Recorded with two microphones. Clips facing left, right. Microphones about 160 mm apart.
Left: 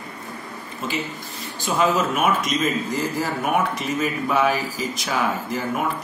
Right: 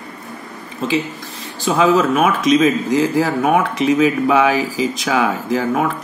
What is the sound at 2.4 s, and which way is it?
Speech, 90° right.